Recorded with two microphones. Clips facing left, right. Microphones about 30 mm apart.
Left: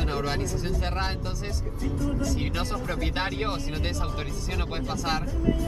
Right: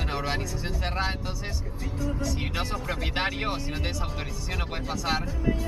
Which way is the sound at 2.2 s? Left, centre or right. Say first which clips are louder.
Left 1 dB; centre.